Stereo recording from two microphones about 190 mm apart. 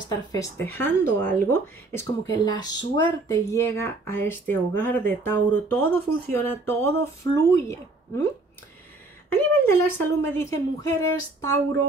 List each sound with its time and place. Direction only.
0.1 s speech: 20° left (ahead or behind)
9.3 s speech: 10° left (ahead or behind)